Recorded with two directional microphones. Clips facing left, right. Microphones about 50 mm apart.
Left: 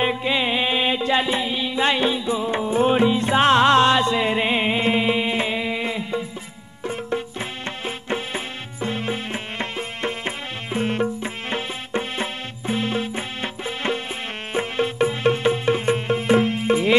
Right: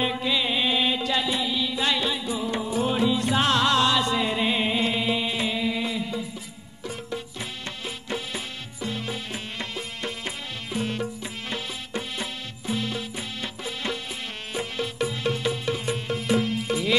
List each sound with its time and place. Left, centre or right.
0.0 s music: left